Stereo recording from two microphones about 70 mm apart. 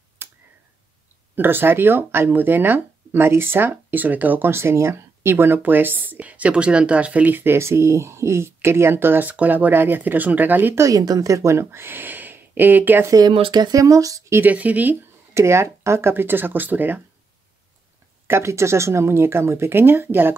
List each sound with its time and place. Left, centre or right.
0.2 s tick: right
1.3 s speech: right
10.8 s speech: right
13.2 s speech: right
13.7 s speech: right
14.4 s speech: right
15.3 s speech: right
18.2 s speech: right